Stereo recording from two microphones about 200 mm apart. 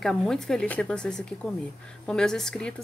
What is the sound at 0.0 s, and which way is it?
Speech, 5° left (ahead or behind).